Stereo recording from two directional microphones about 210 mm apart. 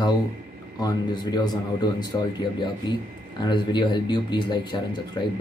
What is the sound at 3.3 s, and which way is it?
Speech, 20° left (ahead or behind).